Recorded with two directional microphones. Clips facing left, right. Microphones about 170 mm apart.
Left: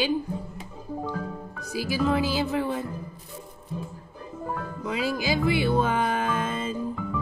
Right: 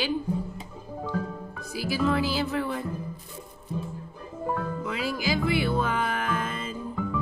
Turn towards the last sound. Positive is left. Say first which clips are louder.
# left 3 dB
turn(degrees=25)  # may be behind; listen again after turning